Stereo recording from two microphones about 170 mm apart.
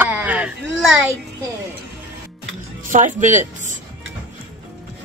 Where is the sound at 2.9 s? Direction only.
50° right (ahead or behind).